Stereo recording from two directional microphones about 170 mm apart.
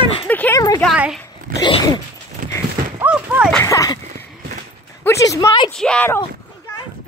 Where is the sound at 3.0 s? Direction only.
10° right (ahead or behind).